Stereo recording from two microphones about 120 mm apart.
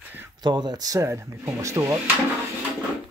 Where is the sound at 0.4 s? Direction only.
35° right (ahead or behind).